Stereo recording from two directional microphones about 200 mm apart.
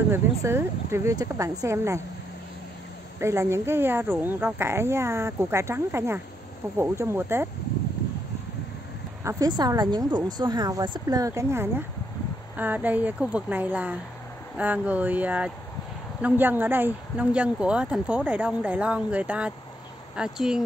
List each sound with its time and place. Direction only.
0.1 s speech: 10° right (ahead or behind)
3.2 s speech: 15° right (ahead or behind)
9.2 s speech: 15° right (ahead or behind)